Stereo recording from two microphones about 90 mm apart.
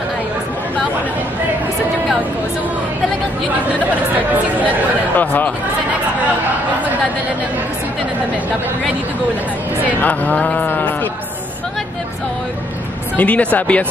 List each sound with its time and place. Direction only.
4.6 s speech: 20° left (ahead or behind)
9.8 s speech: 15° left (ahead or behind)
13.1 s speech: 15° left (ahead or behind)